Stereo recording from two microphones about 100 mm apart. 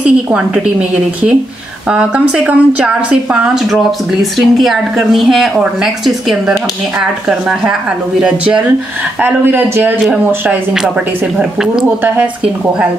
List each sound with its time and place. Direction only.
0.0 s a woman's voice: 10° right (ahead or behind)
9.2 s speech: 20° right (ahead or behind)
10.7 s a woman's voice: 5° right (ahead or behind)